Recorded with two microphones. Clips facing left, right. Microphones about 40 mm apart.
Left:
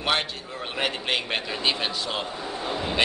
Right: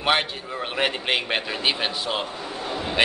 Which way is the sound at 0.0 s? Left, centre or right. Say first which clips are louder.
Right 3 dB; centre.